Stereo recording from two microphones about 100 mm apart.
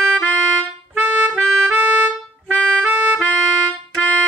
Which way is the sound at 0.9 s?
20° right (ahead or behind).